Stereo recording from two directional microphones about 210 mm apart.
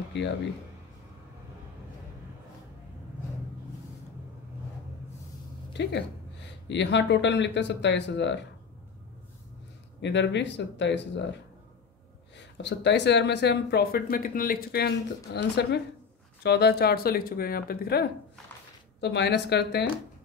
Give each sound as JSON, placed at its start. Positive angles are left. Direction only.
{"t": 0.1, "sound": "speech", "side_deg": 55}
{"t": 5.7, "sound": "speech", "side_deg": 55}
{"t": 10.0, "sound": "speech", "side_deg": 55}
{"t": 12.4, "sound": "speech", "side_deg": 55}